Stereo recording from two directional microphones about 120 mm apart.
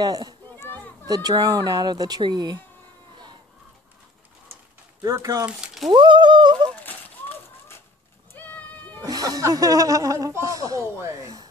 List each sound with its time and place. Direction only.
0.0 s speech: 35° right (ahead or behind)
5.0 s speech: 30° right (ahead or behind)
5.9 s speech: 40° right (ahead or behind)
6.8 s a sound: 15° left (ahead or behind)
8.4 s horse: 15° left (ahead or behind)
9.0 s speech: 30° right (ahead or behind)